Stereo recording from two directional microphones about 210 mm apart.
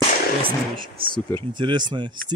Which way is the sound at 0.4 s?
25° right (ahead or behind).